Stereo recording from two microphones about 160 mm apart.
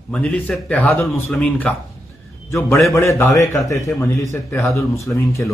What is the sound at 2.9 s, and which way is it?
Speech, 15° left (ahead or behind).